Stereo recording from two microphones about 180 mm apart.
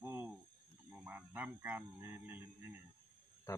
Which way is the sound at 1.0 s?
10° right (ahead or behind).